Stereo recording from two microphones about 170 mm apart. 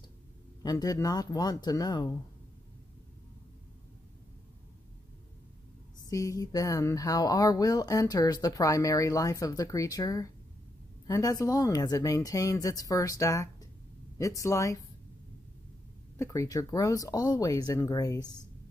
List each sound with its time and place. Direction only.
0.6 s speech: 20° left (ahead or behind)
6.0 s speech: 20° left (ahead or behind)
16.2 s speech: 20° left (ahead or behind)